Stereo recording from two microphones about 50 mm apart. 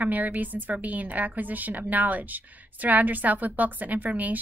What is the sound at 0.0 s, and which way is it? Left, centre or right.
A woman's voice, right.